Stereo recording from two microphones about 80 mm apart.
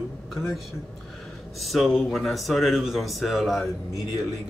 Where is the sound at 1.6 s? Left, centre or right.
Centre.